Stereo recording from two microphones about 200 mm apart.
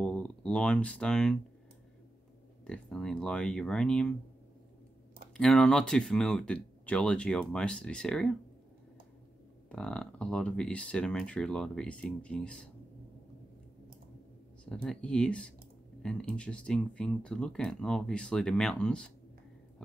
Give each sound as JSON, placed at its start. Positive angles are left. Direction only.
{"t": 0.0, "sound": "speech", "side_deg": 5}
{"t": 2.6, "sound": "speech", "side_deg": 5}
{"t": 5.4, "sound": "speech", "side_deg": 5}
{"t": 9.7, "sound": "speech", "side_deg": 5}
{"t": 14.6, "sound": "speech", "side_deg": 5}